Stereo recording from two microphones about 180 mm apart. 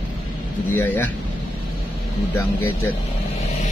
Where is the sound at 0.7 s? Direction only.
10° left (ahead or behind).